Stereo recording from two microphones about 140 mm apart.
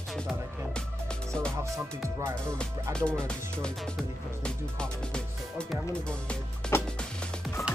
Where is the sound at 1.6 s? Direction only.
20° right (ahead or behind).